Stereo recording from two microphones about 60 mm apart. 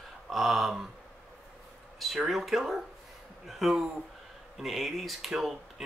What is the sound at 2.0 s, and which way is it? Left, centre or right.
Speech, centre.